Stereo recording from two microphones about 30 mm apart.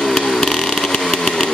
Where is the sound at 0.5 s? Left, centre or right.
Centre.